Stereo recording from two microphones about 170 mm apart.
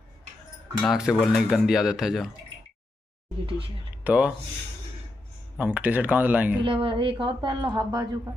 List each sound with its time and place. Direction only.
0.8 s speech: centre (ahead or behind)
3.4 s speech: 30° right (ahead or behind)
4.0 s speech: 10° right (ahead or behind)
5.6 s speech: 10° right (ahead or behind)
6.6 s a woman's voice: 30° right (ahead or behind)